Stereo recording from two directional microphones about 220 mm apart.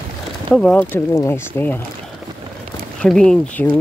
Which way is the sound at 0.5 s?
5° left (ahead or behind).